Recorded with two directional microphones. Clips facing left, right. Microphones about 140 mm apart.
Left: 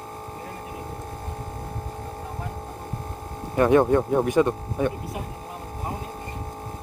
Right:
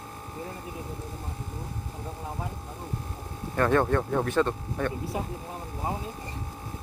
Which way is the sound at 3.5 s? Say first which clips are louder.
Left 6 dB; 15° left (ahead or behind).